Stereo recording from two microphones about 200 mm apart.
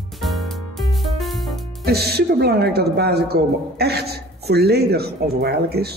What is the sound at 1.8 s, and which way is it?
A woman's voice, 55° right (ahead or behind).